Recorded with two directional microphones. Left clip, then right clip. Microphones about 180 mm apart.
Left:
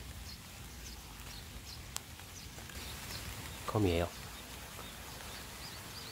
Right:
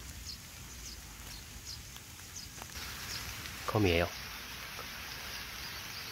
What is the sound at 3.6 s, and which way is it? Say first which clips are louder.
Speech: right 3 dB; 15° right (ahead or behind).